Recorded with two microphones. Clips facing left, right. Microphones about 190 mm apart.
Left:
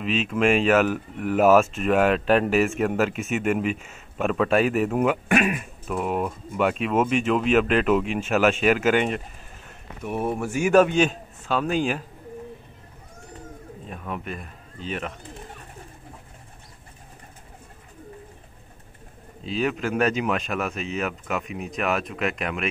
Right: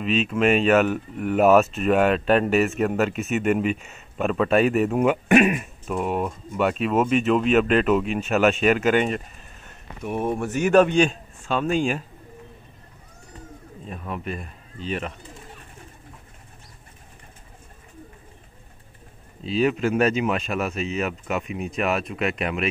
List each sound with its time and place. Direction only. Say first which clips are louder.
0.0 s speech: right 1 dB; 5° left (ahead or behind)
13.8 s speech: right 2 dB; centre (ahead or behind)
19.6 s speech: right 3 dB; centre (ahead or behind)